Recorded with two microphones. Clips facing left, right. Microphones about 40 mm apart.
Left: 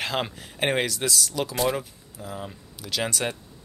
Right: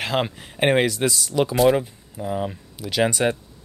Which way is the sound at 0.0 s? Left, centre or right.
Centre.